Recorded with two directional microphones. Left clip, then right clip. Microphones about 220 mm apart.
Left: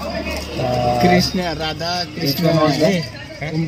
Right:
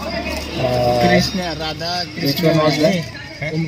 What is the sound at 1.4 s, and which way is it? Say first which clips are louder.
Speech: left 1 dB; 35° left (ahead or behind).